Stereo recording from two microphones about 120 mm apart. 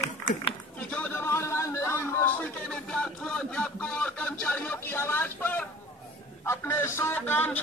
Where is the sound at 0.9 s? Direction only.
15° left (ahead or behind).